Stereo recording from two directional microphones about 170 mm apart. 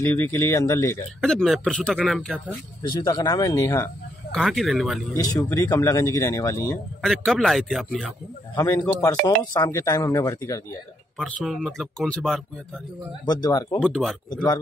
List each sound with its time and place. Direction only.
0.0 s speech: 15° left (ahead or behind)
1.2 s speech: 5° left (ahead or behind)
3.0 s speech: 20° left (ahead or behind); by 5.0 s centre (ahead or behind)
5.1 s speech: 20° left (ahead or behind)
7.0 s speech: centre (ahead or behind)
8.5 s speech: 15° left (ahead or behind)
11.1 s speech: centre (ahead or behind)
13.2 s speech: 25° left (ahead or behind)
13.7 s speech: 5° left (ahead or behind)
14.3 s speech: 25° left (ahead or behind)